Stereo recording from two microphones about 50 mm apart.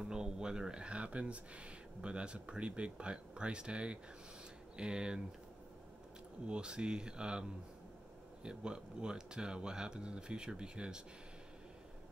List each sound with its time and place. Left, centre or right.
0.0 s speech: centre
6.4 s speech: centre